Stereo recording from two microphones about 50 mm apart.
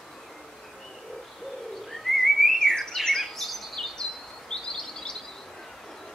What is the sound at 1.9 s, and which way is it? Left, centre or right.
Bird, centre.